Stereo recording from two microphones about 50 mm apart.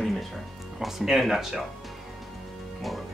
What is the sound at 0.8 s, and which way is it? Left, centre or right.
Speech, centre.